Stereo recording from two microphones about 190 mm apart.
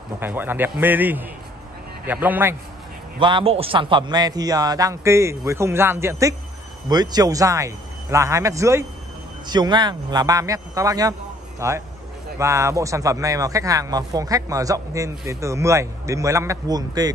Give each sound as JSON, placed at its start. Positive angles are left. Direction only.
{"t": 0.2, "sound": "speech", "side_deg": -10}
{"t": 3.2, "sound": "a man's voice", "side_deg": -25}